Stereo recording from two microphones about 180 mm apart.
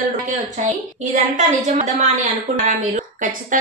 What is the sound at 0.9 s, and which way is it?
A woman's voice, 40° right (ahead or behind).